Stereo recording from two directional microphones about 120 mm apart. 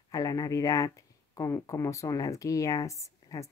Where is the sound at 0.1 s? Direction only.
30° left (ahead or behind).